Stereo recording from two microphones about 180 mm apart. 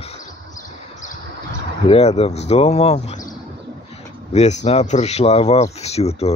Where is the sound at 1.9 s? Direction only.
35° left (ahead or behind).